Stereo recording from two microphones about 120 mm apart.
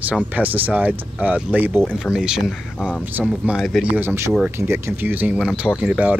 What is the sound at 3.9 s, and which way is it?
Speech, 20° right (ahead or behind).